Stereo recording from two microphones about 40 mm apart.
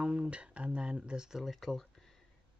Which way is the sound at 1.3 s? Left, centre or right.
Centre.